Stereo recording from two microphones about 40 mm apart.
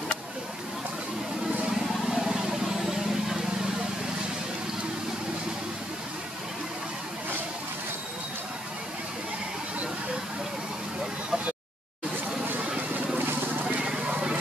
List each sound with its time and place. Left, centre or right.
2.0 s vehicle: centre
13.2 s a sound: right
13.9 s vehicle: right